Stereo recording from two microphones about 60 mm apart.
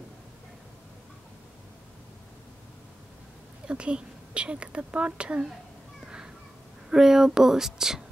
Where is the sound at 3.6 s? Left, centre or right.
Centre.